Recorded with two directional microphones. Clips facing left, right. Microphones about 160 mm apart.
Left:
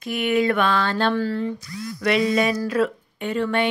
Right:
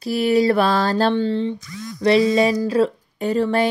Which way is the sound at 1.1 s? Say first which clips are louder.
Right 3 dB; 25° right (ahead or behind).